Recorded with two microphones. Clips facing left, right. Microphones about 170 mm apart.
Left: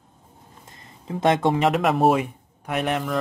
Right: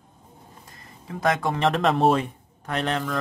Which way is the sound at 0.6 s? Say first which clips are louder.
Left 7 dB; 25° left (ahead or behind).